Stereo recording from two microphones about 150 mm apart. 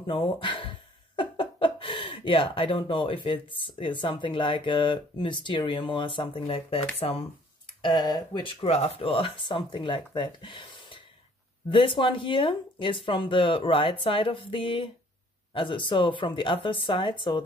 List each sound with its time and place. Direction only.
0.0 s speech: 35° left (ahead or behind)
7.8 s speech: 30° left (ahead or behind)